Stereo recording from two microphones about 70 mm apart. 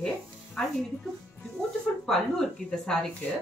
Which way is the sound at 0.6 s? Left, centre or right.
Centre.